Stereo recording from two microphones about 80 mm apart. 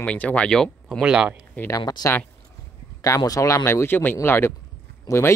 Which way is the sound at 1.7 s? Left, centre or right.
Left.